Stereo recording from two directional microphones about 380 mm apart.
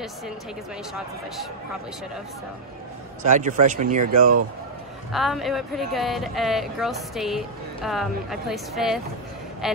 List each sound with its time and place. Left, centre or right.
3.3 s a man's voice: centre
4.0 s speech: right
5.1 s speech: centre